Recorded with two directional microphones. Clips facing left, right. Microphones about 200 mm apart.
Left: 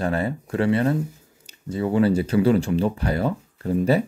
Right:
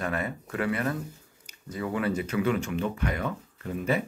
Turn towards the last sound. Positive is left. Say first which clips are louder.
# left 8 dB
turn(degrees=35)  # may be behind; listen again after turning